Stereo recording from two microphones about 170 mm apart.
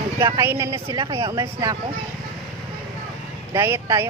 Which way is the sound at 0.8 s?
30° right (ahead or behind).